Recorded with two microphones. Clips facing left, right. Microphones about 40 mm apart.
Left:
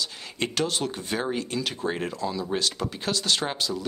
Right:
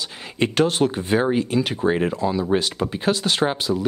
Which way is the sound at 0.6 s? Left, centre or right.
Right.